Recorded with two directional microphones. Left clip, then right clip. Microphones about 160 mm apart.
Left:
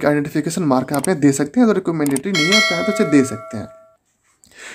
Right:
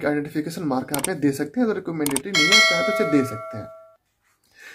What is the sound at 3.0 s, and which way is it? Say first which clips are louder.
Speech: left 5 dB; 40° left (ahead or behind).